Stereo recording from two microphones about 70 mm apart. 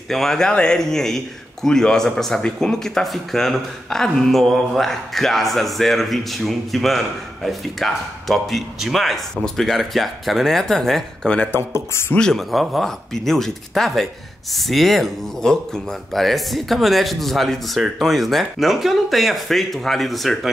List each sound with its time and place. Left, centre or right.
0.1 s a man's voice: centre
11.5 s speech: left
12.2 s a man's voice: centre